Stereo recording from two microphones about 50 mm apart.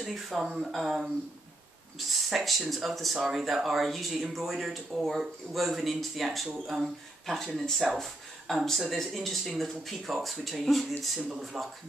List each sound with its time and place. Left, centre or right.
0.0 s speech: centre
11.1 s speech: right
11.4 s speech: centre